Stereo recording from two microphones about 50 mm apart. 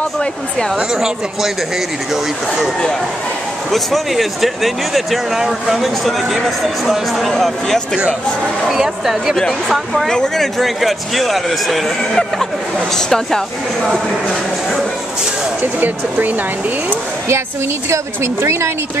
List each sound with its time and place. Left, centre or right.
0.9 s speech: centre
3.7 s speech: centre
10.1 s speech: centre
12.9 s speech: centre
15.6 s speech: right
17.8 s speech: right